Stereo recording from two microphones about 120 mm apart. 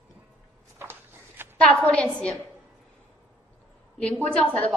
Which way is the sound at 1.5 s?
10° left (ahead or behind).